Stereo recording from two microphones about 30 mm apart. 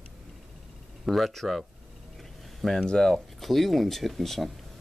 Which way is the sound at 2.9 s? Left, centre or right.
Left.